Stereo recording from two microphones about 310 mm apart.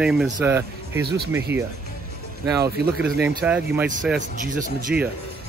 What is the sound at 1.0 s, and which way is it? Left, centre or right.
Speech, right.